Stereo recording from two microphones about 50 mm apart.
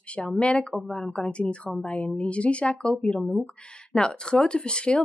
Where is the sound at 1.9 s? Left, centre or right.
Left.